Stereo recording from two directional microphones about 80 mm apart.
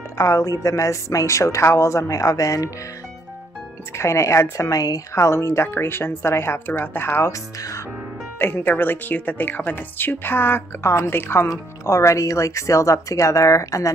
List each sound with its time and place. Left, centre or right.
0.2 s speech: left
4.0 s speech: left
11.4 s speech: left